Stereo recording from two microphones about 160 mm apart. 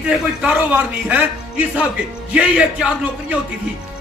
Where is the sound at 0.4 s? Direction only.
10° right (ahead or behind).